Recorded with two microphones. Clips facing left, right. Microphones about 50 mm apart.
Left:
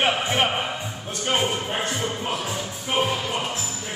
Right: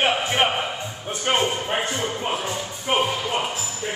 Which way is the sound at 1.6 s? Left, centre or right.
Centre.